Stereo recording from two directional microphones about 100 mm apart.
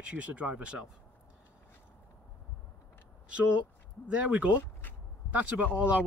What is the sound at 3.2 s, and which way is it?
Speech, 10° right (ahead or behind).